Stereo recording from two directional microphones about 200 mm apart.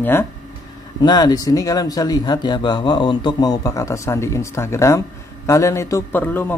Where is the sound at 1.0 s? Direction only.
20° left (ahead or behind).